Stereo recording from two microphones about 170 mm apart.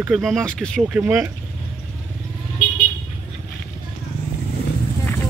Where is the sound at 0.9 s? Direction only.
10° right (ahead or behind).